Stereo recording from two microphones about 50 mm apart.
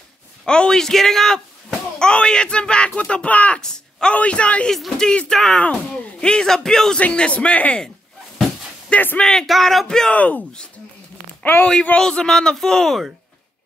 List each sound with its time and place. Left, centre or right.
0.5 s speech: centre
4.6 s speech: centre
5.0 s speech: left
5.3 s speech: centre
5.6 s speech: left
6.3 s speech: centre
7.0 s speech: left
9.2 s speech: centre
9.5 s a sound: centre
10.1 s speech: left
11.6 s speech: left